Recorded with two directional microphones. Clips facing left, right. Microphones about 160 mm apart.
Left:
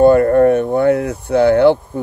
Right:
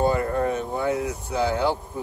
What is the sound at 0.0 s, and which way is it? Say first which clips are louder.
Speech: left 13 dB; 60° left (ahead or behind).